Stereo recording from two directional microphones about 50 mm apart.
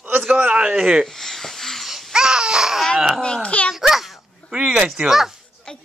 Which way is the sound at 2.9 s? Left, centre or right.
Centre.